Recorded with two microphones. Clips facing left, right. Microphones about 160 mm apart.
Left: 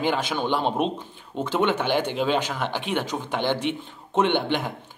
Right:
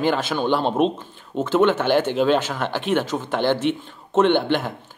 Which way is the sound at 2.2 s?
10° left (ahead or behind).